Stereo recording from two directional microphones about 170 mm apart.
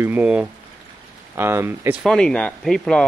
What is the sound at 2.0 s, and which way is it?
Speech, 5° left (ahead or behind).